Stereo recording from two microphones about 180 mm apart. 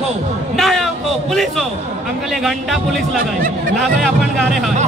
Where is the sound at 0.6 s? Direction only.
Centre (ahead or behind).